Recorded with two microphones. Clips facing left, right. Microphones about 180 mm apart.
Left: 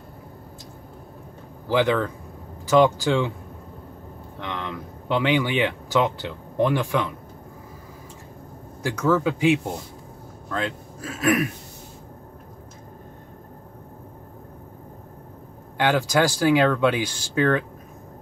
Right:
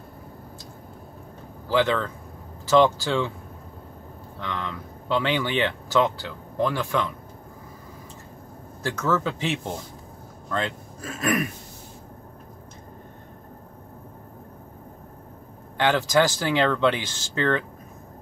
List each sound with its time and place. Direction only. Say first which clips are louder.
1.7 s speech: left 2 dB; 15° left (ahead or behind)
4.4 s speech: left 1 dB; 20° left (ahead or behind)
8.8 s speech: left 4 dB; 10° left (ahead or behind)
15.8 s speech: even; 10° left (ahead or behind)